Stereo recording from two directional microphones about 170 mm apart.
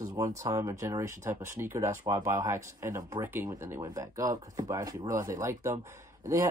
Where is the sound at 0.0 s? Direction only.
20° right (ahead or behind).